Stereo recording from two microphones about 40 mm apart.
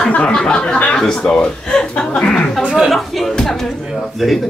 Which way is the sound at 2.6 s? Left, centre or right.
Centre.